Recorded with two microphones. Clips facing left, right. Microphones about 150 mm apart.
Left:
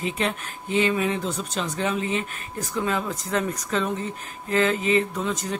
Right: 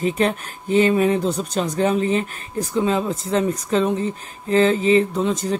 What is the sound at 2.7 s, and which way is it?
A woman's voice, 25° right (ahead or behind).